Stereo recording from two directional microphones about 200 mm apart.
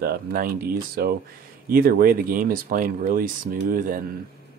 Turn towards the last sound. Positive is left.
turn(degrees=-45)  # may be behind; listen again after turning